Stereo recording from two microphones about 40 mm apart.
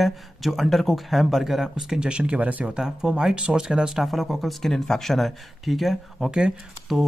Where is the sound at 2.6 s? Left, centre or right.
Centre.